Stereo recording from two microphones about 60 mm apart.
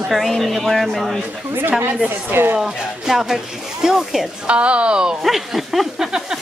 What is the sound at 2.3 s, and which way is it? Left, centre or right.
Speech, right.